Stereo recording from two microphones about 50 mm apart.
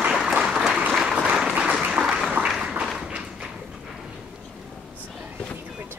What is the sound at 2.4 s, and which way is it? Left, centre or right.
Applause, right.